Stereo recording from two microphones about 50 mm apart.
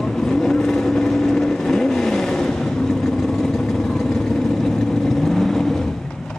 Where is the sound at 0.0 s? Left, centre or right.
Centre.